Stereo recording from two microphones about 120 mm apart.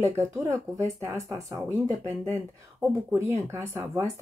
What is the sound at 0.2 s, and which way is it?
Speech, 20° right (ahead or behind).